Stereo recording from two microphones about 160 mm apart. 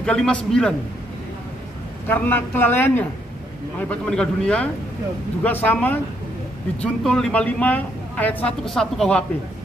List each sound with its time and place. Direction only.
0.0 s speech: 5° left (ahead or behind)
2.0 s a man's voice: 10° left (ahead or behind)
4.1 s a man's voice: 5° left (ahead or behind)